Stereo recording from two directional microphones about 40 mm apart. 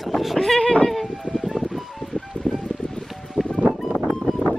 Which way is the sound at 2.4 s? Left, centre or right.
Left.